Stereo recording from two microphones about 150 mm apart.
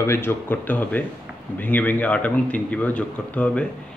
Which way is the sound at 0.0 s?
15° left (ahead or behind).